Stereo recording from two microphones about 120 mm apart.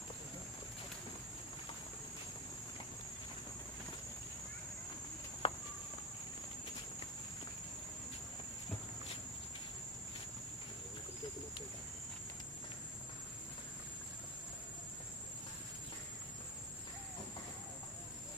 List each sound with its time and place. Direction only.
5.4 s walk: 50° left (ahead or behind)